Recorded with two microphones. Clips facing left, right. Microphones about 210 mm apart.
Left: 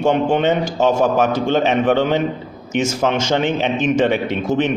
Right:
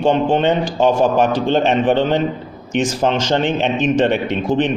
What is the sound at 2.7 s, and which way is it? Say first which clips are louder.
A man's voice: right 1 dB; 10° left (ahead or behind).